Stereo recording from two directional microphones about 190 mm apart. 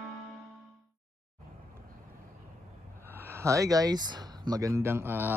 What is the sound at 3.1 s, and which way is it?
Speech, 15° right (ahead or behind).